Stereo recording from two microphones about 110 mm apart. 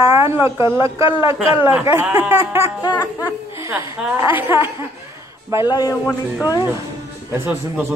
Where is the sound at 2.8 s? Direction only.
40° left (ahead or behind).